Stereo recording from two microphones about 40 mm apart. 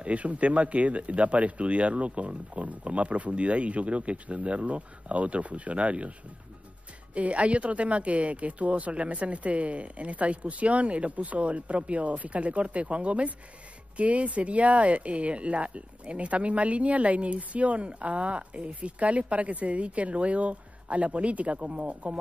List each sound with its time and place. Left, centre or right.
0.0 s speech: right
7.2 s speech: right